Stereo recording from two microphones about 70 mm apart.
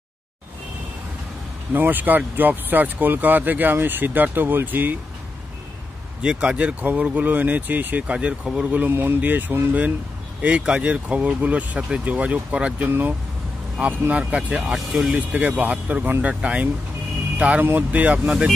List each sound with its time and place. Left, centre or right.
1.7 s speech: right
6.2 s speech: centre
10.4 s speech: centre
14.1 s speech: centre
14.7 s speech: centre
15.3 s speech: centre